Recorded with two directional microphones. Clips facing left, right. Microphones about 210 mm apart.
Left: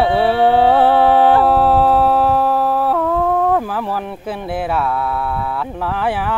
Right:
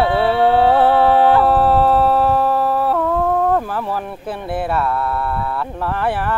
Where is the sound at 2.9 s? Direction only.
Centre (ahead or behind).